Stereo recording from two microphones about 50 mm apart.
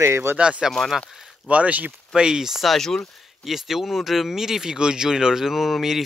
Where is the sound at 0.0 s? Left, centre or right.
Right.